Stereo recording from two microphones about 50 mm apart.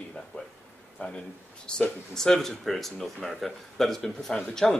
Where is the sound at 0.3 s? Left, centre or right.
Left.